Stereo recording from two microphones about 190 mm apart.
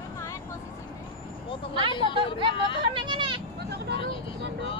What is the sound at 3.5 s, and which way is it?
Vehicle, 60° right (ahead or behind).